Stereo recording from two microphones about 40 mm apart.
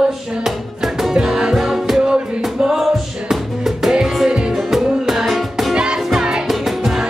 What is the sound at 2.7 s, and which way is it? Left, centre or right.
Music, centre.